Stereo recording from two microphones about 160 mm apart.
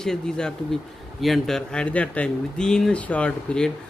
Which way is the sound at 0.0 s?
5° left (ahead or behind).